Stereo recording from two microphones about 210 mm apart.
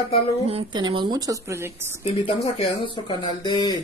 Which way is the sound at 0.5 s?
25° right (ahead or behind).